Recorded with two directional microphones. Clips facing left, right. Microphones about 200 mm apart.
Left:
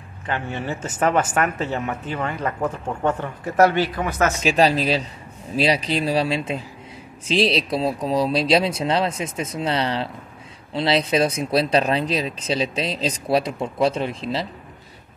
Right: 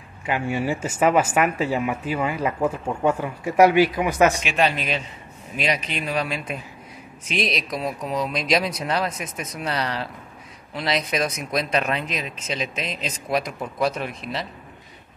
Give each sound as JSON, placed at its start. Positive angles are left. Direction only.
{"t": 0.3, "sound": "speech", "side_deg": -10}
{"t": 4.4, "sound": "speech", "side_deg": 35}